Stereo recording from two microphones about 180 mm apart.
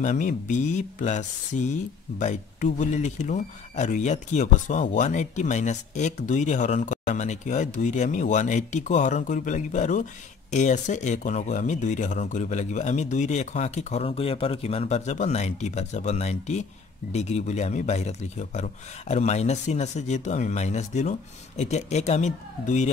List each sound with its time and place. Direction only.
0.0 s speech: 45° left (ahead or behind)